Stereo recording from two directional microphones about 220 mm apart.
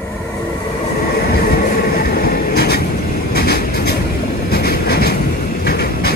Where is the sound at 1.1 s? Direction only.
45° left (ahead or behind).